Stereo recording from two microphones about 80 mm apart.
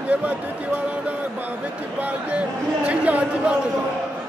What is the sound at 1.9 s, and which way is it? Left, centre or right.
Speech, centre.